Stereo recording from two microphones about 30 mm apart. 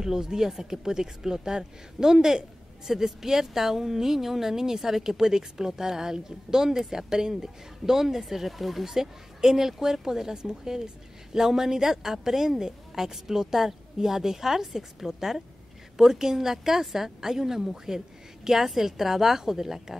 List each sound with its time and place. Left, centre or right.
0.0 s a woman's voice: centre